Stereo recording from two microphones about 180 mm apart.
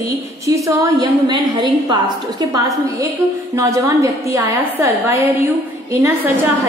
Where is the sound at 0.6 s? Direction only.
20° right (ahead or behind).